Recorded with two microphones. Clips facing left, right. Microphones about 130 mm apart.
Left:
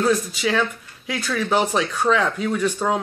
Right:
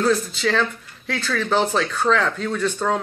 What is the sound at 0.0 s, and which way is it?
Speech, 10° left (ahead or behind).